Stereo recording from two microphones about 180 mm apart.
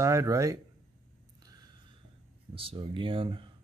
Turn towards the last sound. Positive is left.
turn(degrees=-30)  # may be behind; listen again after turning